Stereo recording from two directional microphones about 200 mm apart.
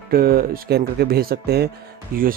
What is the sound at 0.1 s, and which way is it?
Speech, 50° right (ahead or behind).